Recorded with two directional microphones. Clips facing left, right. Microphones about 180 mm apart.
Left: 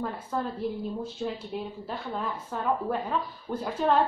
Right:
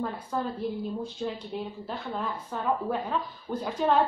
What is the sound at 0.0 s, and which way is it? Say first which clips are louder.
Speech: even; 5° left (ahead or behind).